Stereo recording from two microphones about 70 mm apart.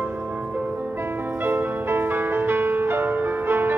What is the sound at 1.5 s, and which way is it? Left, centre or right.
Music, right.